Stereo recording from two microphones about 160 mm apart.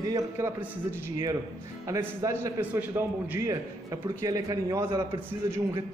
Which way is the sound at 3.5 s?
20° right (ahead or behind).